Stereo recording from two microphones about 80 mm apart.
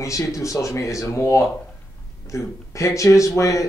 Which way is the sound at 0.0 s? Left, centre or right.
Left.